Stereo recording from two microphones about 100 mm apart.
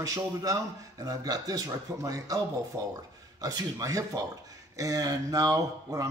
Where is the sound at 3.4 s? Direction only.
35° right (ahead or behind).